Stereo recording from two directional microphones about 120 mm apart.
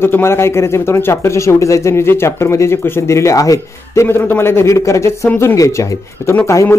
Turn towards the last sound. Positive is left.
turn(degrees=25)  # may be behind; listen again after turning